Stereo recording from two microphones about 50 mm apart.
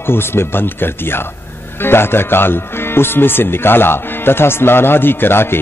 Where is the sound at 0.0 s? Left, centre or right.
Left.